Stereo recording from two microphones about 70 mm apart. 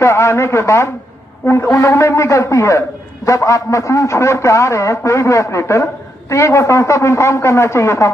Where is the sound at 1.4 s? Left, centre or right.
Left.